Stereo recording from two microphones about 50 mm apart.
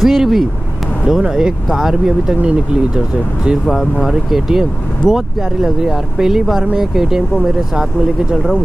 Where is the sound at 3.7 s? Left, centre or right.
Centre.